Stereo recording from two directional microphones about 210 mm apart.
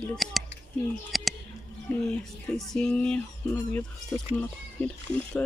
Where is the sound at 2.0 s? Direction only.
5° left (ahead or behind).